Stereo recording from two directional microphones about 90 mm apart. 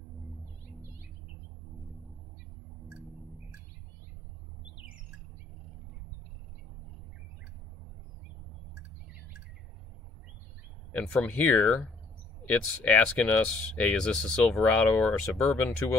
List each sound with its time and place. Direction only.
11.0 s speech: 15° left (ahead or behind)